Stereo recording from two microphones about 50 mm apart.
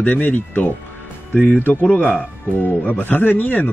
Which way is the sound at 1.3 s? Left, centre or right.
Left.